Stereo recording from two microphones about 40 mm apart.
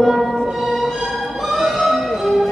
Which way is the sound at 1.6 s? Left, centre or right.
Centre.